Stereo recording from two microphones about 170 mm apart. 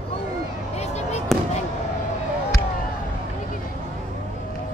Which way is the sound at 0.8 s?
40° left (ahead or behind).